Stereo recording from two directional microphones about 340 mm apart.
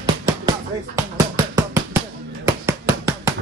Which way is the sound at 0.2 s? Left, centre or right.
Centre.